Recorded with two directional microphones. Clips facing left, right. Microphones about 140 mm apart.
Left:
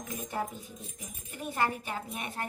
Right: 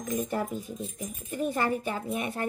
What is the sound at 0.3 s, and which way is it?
Speech, 55° right (ahead or behind).